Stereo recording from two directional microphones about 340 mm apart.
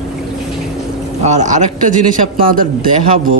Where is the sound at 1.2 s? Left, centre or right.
Right.